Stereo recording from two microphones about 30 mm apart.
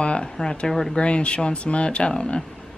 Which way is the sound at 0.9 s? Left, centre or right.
Left.